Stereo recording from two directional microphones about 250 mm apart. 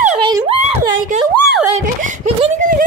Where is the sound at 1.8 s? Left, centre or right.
Right.